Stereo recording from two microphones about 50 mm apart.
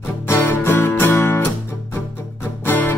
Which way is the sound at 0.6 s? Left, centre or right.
Left.